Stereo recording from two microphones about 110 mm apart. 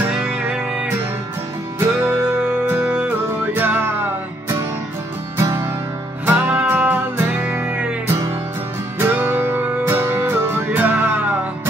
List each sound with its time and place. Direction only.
2.0 s music: 10° right (ahead or behind)
8.1 s music: 30° right (ahead or behind)